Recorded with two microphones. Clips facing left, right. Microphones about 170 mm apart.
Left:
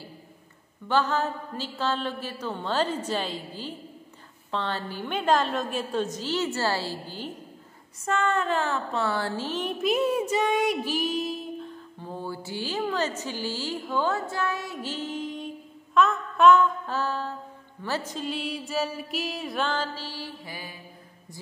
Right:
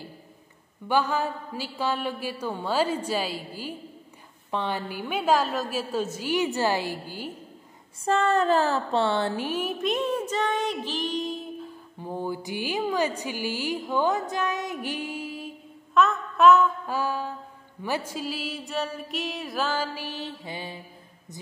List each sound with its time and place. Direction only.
0.8 s a woman's voice: 10° right (ahead or behind)
8.0 s a sound: 35° right (ahead or behind); by 9.8 s 10° right (ahead or behind)
9.8 s child singing: 5° left (ahead or behind)
12.0 s a woman's voice: 15° right (ahead or behind)
17.8 s music: 10° right (ahead or behind)